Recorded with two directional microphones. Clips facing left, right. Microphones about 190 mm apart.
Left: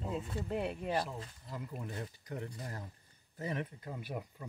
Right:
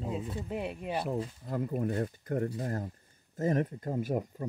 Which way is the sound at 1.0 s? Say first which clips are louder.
Right 10 dB; 50° right (ahead or behind).